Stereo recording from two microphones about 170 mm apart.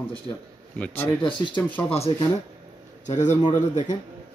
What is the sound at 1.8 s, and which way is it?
A man's voice, 35° left (ahead or behind).